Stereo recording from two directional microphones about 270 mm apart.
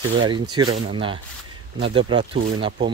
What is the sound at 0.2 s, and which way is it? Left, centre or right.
Speech, centre.